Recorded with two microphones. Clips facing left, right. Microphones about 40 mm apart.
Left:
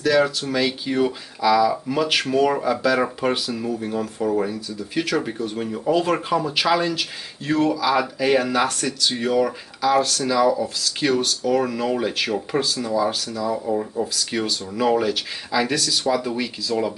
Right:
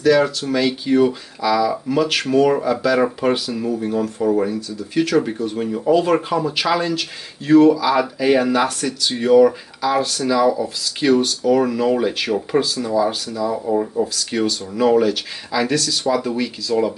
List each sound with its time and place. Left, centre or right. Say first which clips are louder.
0.0 s speech: right 3 dB; centre